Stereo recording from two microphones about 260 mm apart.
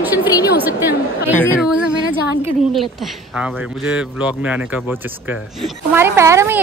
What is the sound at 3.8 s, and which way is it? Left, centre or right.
A woman's voice, centre.